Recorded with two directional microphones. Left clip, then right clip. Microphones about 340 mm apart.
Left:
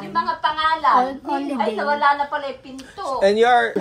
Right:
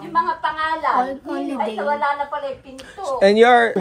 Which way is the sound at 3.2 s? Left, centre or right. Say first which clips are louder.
Right 3 dB; centre.